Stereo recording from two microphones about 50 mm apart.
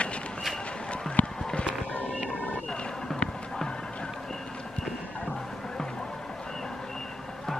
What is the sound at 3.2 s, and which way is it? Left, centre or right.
Music, centre.